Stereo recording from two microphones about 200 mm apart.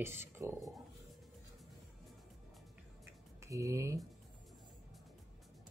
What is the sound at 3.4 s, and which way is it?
Speech, 15° right (ahead or behind).